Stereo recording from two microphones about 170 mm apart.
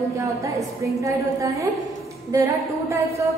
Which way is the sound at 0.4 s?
20° right (ahead or behind).